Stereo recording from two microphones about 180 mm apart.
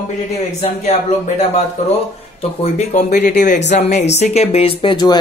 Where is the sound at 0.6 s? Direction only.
40° left (ahead or behind).